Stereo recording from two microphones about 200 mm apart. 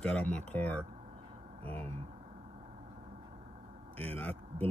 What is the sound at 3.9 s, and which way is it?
Speech, 10° left (ahead or behind).